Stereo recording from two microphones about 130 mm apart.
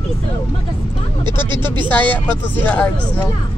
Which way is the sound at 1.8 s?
15° left (ahead or behind).